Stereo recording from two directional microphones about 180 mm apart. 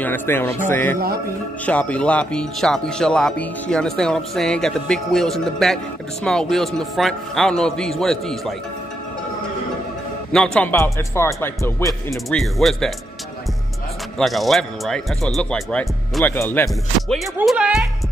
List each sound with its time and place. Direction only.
0.0 s speech: 10° left (ahead or behind)
0.9 s a man's voice: 55° right (ahead or behind)
1.7 s speech: 10° left (ahead or behind)
10.3 s speech: 5° left (ahead or behind)
12.3 s speech: centre (ahead or behind)
14.1 s speech: centre (ahead or behind)
17.5 s speech: 5° right (ahead or behind)